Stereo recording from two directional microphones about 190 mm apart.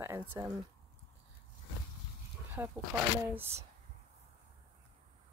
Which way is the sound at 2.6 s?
15° right (ahead or behind).